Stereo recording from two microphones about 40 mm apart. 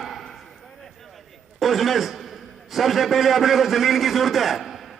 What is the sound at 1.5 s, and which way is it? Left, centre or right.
A man's voice, centre.